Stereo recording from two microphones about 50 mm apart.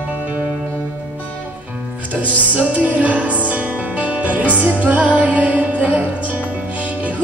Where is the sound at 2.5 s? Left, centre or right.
Right.